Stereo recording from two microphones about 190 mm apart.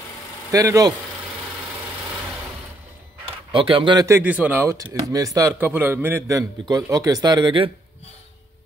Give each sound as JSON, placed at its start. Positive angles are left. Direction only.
{"t": 0.5, "sound": "a man's voice", "side_deg": -15}
{"t": 3.5, "sound": "a man's voice", "side_deg": -25}